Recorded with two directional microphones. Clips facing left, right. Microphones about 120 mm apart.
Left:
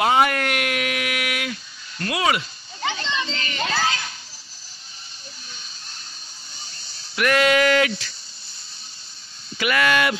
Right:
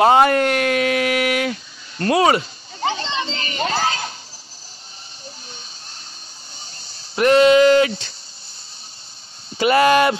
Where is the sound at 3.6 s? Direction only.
35° right (ahead or behind).